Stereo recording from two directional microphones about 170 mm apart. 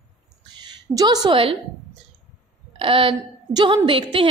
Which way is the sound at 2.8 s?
30° right (ahead or behind).